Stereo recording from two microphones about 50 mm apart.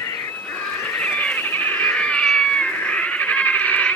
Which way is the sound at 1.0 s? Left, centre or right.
Left.